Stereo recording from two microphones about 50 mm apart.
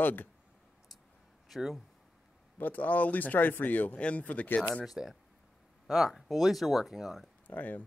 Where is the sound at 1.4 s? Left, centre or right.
Centre.